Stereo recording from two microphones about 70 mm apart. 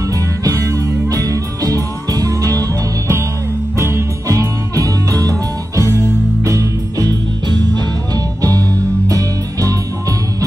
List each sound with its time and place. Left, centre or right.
0.0 s music: right
3.7 s jingle bell: right
4.3 s music: right
6.4 s music: right
7.4 s music: right